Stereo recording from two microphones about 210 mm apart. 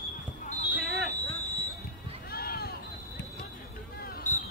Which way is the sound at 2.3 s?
45° left (ahead or behind).